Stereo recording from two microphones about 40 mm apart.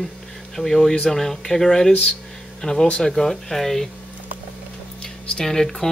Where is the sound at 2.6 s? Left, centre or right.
Left.